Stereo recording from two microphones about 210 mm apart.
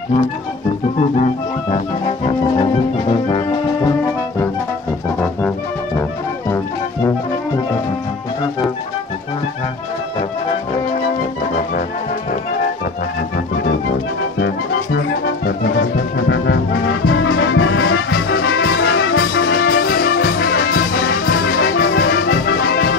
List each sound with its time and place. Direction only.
1.7 s music: 25° left (ahead or behind)
14.4 s music: 50° left (ahead or behind)